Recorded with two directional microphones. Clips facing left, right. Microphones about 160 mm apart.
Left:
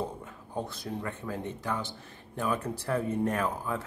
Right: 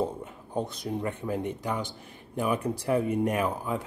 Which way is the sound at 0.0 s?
20° right (ahead or behind).